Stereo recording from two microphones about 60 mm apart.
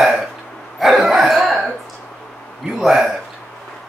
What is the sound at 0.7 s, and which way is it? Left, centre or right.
Cough, centre.